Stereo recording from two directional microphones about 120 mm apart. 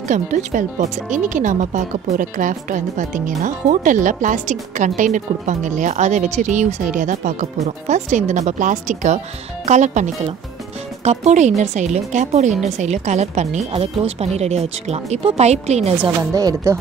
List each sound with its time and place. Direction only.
0.1 s speech: 90° right
11.1 s speech: 75° right (ahead or behind)
16.3 s speech: 30° right (ahead or behind)